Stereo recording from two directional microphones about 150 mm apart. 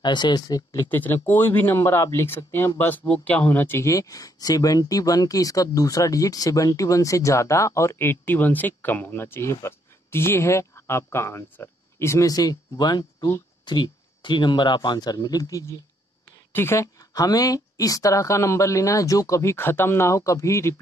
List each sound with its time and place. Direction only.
0.0 s speech: 30° left (ahead or behind)